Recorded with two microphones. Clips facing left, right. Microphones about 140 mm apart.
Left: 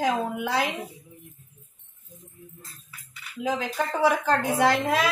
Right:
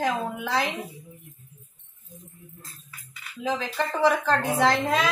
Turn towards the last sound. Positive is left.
turn(degrees=10)  # may be behind; listen again after turning